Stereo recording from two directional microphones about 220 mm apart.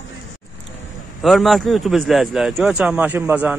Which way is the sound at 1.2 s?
Centre (ahead or behind).